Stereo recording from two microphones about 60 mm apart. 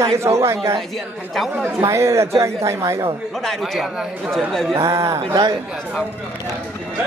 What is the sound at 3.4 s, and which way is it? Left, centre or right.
A man's voice, centre.